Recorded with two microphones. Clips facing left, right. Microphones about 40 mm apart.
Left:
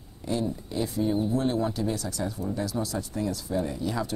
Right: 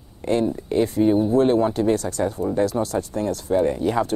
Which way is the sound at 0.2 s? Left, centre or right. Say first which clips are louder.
Right 8 dB; right.